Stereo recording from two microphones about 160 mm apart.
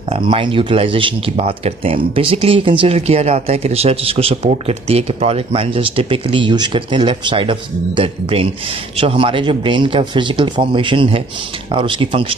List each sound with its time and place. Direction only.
0.3 s speech: 35° right (ahead or behind)